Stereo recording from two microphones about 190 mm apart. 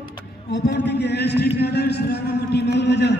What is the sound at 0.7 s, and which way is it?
A man's voice, 65° left (ahead or behind).